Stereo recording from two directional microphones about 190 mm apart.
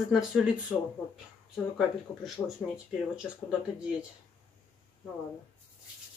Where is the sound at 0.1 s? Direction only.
Centre (ahead or behind).